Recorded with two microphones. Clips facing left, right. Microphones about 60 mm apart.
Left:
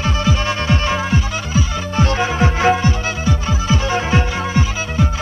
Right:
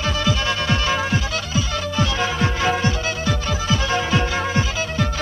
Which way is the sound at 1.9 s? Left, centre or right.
Left.